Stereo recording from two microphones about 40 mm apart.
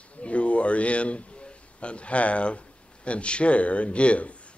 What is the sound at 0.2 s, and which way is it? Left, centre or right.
A man's voice, left.